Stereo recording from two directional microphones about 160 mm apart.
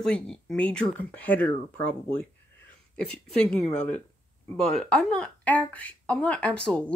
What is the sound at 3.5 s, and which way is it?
Speech, 5° left (ahead or behind).